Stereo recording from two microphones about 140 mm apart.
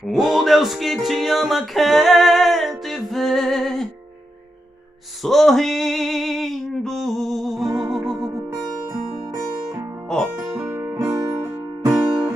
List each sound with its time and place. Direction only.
0.0 s music: centre (ahead or behind)
5.2 s a sound: centre (ahead or behind)
7.5 s music: 25° right (ahead or behind)
7.9 s music: 5° right (ahead or behind)
8.5 s music: 30° right (ahead or behind)
10.0 s music: 5° left (ahead or behind)
10.6 s music: 20° right (ahead or behind)
11.9 s music: 5° right (ahead or behind)